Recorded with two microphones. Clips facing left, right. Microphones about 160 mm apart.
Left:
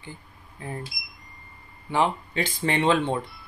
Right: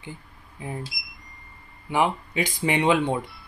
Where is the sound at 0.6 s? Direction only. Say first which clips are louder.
Right 1 dB; 15° right (ahead or behind).